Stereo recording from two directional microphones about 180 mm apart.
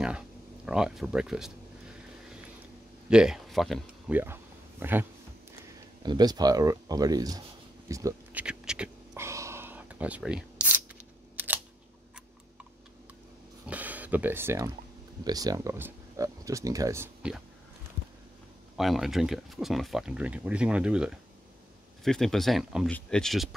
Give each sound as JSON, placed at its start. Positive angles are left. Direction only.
{"t": 0.7, "sound": "speech", "side_deg": -5}
{"t": 3.1, "sound": "speech", "side_deg": -5}
{"t": 4.2, "sound": "a sound", "side_deg": -10}
{"t": 6.0, "sound": "speech", "side_deg": -20}
{"t": 8.4, "sound": "a sound", "side_deg": -5}
{"t": 11.3, "sound": "camera", "side_deg": -10}
{"t": 13.7, "sound": "speech", "side_deg": -10}
{"t": 18.8, "sound": "speech", "side_deg": 0}